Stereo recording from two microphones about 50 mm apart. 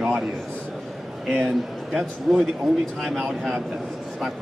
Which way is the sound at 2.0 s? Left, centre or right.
Centre.